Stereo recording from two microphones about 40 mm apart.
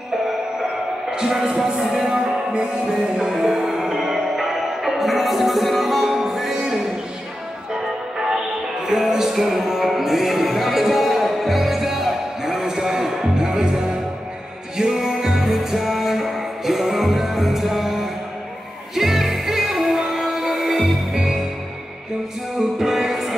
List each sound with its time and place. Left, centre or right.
1.1 s speech: centre
2.5 s music: right
22.6 s music: centre